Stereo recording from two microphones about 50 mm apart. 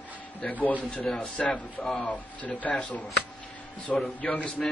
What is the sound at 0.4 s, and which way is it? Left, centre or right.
Speech, left.